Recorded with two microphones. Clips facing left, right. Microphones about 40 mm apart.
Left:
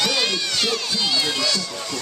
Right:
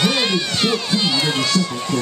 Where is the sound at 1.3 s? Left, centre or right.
Right.